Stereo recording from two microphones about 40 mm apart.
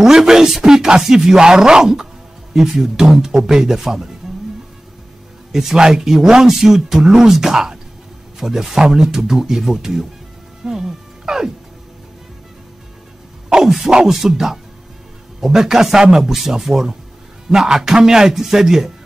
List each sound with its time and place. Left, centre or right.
0.0 s speech: centre
5.5 s speech: centre
10.6 s music: centre
13.5 s speech: centre
13.8 s speech: centre